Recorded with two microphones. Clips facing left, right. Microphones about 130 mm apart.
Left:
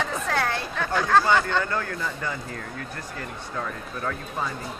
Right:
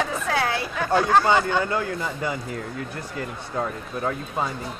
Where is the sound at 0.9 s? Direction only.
20° right (ahead or behind).